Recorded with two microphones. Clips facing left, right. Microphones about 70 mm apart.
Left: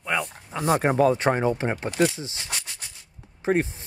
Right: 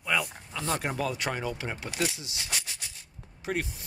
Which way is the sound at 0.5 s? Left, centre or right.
Left.